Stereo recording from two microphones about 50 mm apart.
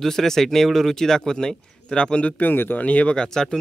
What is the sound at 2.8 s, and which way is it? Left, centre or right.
Speech, left.